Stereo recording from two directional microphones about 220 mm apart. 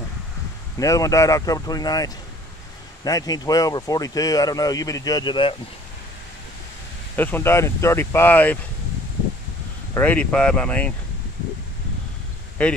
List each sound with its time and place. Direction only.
0.7 s speech: 15° left (ahead or behind)
7.2 s speech: 10° left (ahead or behind)
9.9 s speech: 5° left (ahead or behind)
12.6 s speech: 5° left (ahead or behind)